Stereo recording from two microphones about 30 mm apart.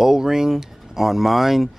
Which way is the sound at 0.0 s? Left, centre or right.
Centre.